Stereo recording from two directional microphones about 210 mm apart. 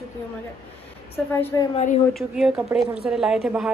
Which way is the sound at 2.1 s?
Centre (ahead or behind).